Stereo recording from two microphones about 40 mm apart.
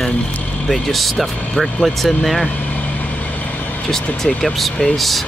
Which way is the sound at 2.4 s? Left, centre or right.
Left.